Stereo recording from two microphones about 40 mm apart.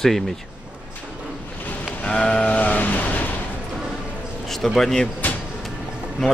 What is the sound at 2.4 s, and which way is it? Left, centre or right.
Vehicle, left.